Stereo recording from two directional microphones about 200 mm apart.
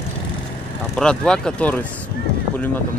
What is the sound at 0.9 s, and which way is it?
Speech, 5° left (ahead or behind).